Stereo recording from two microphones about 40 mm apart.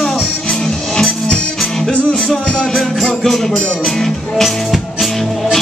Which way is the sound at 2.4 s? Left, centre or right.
Left.